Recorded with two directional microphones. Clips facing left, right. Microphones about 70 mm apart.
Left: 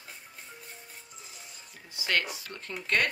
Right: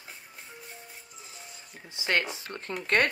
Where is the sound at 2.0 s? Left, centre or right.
Right.